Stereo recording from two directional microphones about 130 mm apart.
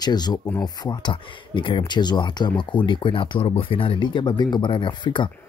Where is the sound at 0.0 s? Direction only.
30° left (ahead or behind).